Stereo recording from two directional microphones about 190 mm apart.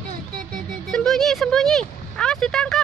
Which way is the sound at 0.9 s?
Centre (ahead or behind).